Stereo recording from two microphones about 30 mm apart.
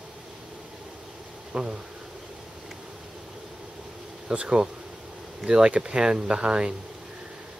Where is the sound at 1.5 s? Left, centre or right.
Right.